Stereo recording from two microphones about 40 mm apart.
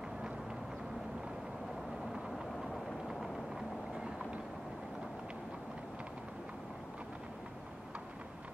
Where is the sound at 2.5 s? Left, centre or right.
Centre.